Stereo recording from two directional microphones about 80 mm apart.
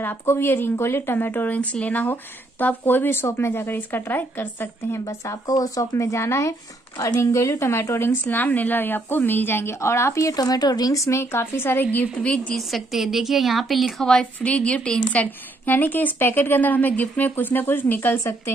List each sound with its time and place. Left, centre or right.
0.2 s a woman's voice: left
4.9 s a woman's voice: left; by 12.5 s centre
12.5 s a woman's voice: centre; by 18.3 s left